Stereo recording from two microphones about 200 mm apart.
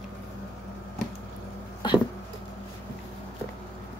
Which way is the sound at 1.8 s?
20° left (ahead or behind).